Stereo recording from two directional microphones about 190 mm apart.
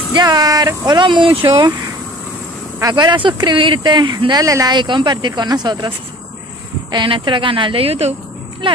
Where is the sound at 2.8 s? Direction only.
20° right (ahead or behind).